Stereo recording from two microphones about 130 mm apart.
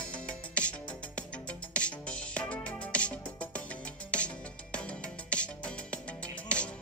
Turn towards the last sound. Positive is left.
turn(degrees=10)  # may be behind; listen again after turning